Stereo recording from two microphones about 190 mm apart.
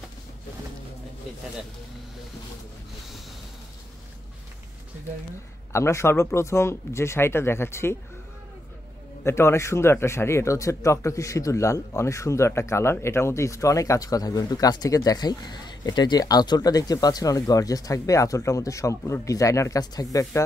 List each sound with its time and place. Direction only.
5.7 s speech: 15° left (ahead or behind)
9.2 s speech: 15° left (ahead or behind)